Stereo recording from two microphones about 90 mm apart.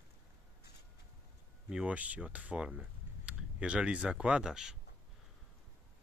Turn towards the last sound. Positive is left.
turn(degrees=-5)  # may be behind; listen again after turning